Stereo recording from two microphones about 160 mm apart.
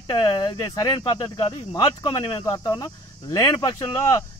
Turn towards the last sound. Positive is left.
turn(degrees=20)  # may be behind; listen again after turning